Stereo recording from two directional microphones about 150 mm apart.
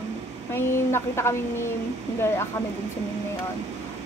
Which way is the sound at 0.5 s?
15° left (ahead or behind).